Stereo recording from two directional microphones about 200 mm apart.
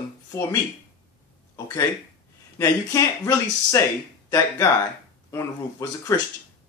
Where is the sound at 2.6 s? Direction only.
15° left (ahead or behind).